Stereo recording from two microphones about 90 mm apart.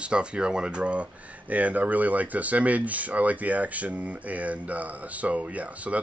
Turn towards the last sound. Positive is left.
turn(degrees=-15)  # may be behind; listen again after turning